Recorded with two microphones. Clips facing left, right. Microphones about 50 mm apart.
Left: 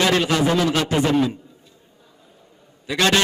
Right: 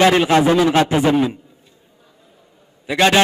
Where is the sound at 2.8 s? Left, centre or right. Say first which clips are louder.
Right 4 dB; centre.